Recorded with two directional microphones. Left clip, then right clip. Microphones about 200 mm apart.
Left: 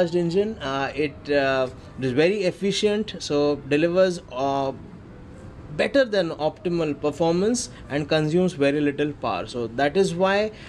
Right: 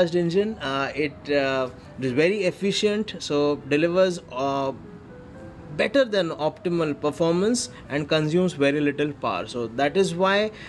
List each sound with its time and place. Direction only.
0.0 s speech: 10° right (ahead or behind)
5.8 s speech: centre (ahead or behind)